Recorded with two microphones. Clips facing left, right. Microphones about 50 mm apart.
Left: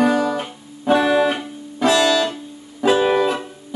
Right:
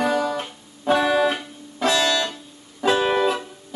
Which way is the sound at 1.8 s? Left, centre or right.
Centre.